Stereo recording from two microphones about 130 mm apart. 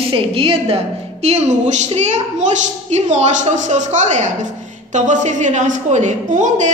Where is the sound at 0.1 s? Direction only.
45° right (ahead or behind).